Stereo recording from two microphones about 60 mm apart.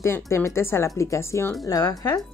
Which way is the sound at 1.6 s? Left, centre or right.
Left.